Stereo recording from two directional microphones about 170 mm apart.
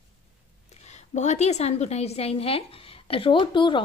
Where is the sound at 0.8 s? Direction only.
40° left (ahead or behind).